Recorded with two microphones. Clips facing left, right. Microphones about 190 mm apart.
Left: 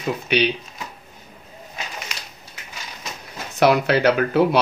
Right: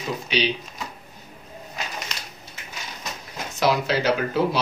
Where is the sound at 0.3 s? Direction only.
60° left (ahead or behind).